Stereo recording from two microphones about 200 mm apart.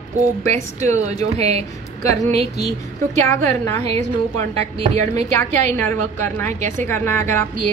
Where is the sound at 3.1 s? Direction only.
15° left (ahead or behind).